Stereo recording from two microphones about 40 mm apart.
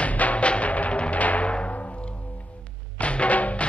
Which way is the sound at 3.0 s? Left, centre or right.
Left.